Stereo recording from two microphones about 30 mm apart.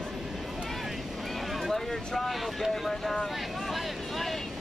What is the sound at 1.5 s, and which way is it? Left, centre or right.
Vehicle, centre.